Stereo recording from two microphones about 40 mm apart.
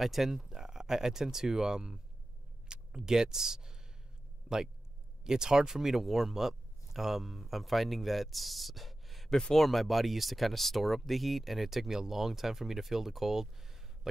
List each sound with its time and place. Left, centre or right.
0.0 s speech: centre
4.5 s speech: right
5.2 s speech: centre